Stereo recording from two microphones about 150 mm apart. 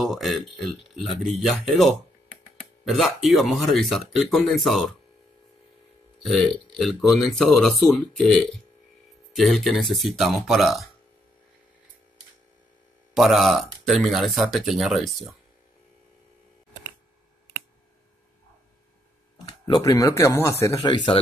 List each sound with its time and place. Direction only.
0.0 s speech: centre (ahead or behind)
6.2 s speech: centre (ahead or behind)
13.1 s speech: centre (ahead or behind)
19.7 s speech: 20° left (ahead or behind)